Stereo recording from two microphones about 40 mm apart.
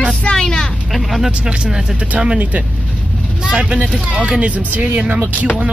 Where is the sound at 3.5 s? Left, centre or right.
Right.